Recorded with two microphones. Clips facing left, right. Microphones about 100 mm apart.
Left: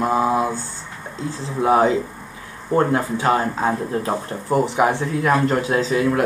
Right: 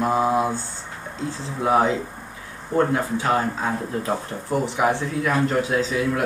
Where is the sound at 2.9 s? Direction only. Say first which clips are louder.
Left 3 dB; 40° left (ahead or behind).